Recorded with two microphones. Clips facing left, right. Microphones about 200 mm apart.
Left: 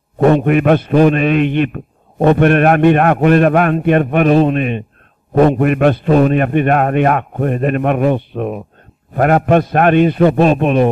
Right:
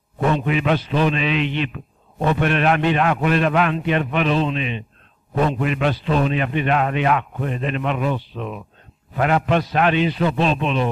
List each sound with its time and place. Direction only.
0.2 s a man's voice: 55° left (ahead or behind)